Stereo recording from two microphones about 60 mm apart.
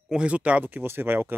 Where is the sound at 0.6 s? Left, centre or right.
Right.